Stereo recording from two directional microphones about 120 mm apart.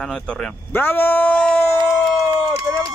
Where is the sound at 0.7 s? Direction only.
15° left (ahead or behind).